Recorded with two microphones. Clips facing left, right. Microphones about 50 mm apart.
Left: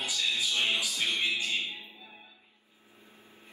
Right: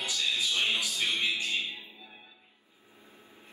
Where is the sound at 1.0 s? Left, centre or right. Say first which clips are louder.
Even; right.